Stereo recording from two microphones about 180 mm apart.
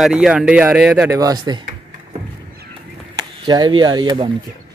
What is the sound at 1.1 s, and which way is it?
Speech, 20° right (ahead or behind).